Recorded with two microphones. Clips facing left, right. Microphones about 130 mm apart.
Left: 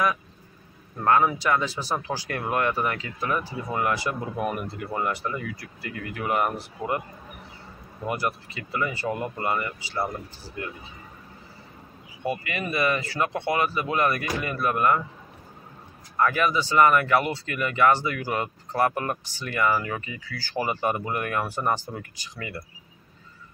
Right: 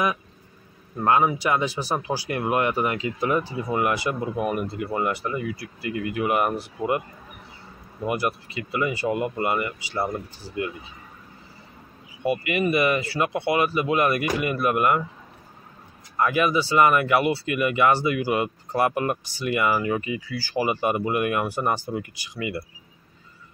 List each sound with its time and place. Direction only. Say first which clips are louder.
1.0 s speech: right 1 dB; 15° right (ahead or behind)
8.1 s speech: right 2 dB; 15° right (ahead or behind)
12.3 s speech: right 6 dB; 15° right (ahead or behind)
16.2 s speech: right 2 dB; 15° right (ahead or behind)